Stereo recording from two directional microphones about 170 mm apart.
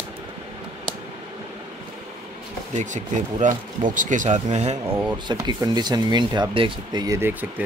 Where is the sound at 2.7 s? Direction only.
45° right (ahead or behind).